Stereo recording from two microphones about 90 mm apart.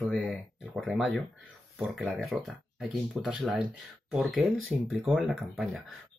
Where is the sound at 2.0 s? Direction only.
5° right (ahead or behind).